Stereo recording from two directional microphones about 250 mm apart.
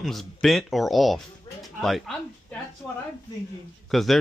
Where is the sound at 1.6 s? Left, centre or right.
Centre.